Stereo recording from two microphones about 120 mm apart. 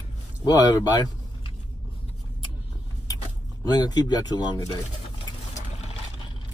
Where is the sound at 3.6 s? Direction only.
35° left (ahead or behind).